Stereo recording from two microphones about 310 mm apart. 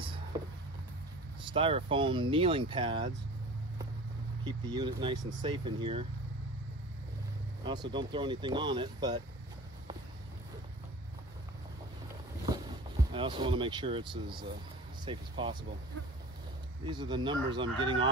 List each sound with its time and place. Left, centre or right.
1.5 s speech: centre
4.5 s speech: centre
7.6 s speech: centre
13.1 s speech: centre
16.8 s speech: centre